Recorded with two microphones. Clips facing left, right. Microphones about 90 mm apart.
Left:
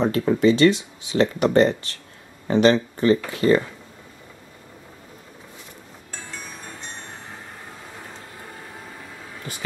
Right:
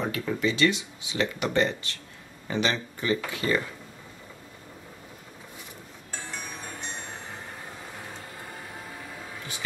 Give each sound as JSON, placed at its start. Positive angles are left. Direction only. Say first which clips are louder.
{"t": 0.0, "sound": "speech", "louder": "left 9 dB", "side_deg": 35}
{"t": 6.3, "sound": "music", "louder": "even", "side_deg": -10}